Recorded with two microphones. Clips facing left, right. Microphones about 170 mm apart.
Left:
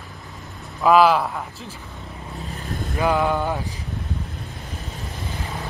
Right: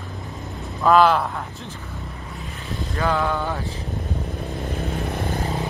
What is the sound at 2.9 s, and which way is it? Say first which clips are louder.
Speech: left 2 dB; 15° left (ahead or behind).